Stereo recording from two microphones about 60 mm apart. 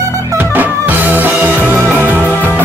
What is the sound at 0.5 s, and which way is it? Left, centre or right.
Music, right.